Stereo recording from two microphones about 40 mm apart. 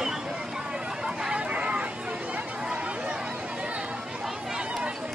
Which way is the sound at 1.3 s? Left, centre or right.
Right.